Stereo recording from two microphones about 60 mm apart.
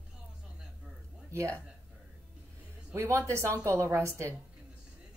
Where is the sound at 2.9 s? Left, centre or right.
Right.